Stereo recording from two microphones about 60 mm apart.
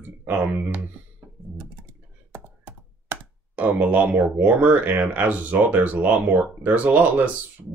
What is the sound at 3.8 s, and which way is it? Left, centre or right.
Speech, right.